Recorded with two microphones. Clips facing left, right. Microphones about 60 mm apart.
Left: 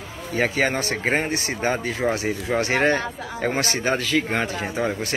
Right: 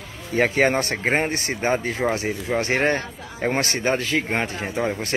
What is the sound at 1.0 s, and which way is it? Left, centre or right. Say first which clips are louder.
Speech: left 1 dB; right.